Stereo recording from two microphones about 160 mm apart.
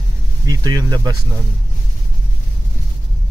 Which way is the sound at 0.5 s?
25° right (ahead or behind).